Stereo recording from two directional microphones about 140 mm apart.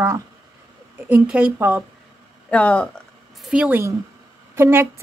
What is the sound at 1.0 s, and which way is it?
Speech, 10° right (ahead or behind).